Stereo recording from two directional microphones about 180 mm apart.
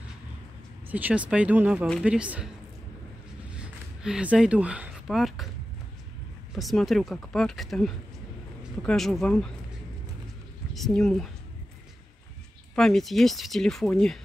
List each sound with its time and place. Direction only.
0.8 s speech: 10° right (ahead or behind)
3.4 s a sound: 5° right (ahead or behind)
6.5 s speech: centre (ahead or behind)
10.7 s speech: centre (ahead or behind)
12.7 s speech: centre (ahead or behind)